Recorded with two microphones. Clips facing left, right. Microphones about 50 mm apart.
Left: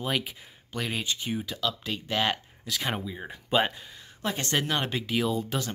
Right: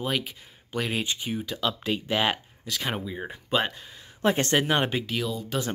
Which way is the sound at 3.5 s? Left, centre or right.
Centre.